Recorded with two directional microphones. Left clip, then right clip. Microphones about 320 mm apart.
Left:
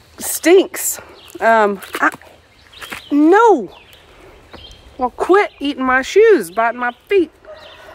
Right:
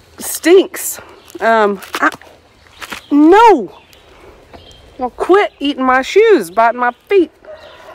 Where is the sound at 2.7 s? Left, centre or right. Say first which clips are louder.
Right 4 dB; centre.